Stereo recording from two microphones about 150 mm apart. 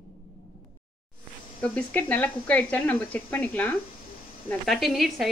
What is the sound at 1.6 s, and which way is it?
Speech, 10° left (ahead or behind).